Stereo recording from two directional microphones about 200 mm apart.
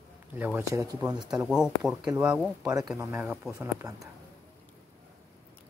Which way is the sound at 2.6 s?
20° right (ahead or behind).